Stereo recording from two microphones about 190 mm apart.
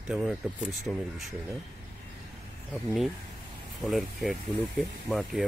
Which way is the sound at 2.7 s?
Centre (ahead or behind).